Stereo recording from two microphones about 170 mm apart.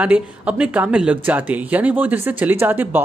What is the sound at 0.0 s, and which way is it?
A woman's voice, 5° right (ahead or behind).